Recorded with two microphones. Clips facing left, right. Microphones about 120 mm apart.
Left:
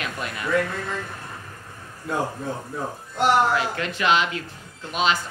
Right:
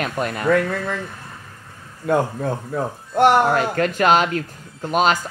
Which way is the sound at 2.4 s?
55° right (ahead or behind).